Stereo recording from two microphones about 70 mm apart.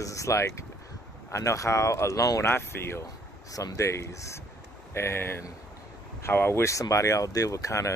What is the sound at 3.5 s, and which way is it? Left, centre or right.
Speech, left.